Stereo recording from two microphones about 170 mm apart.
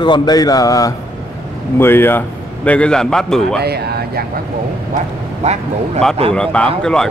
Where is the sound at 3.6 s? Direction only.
70° right (ahead or behind).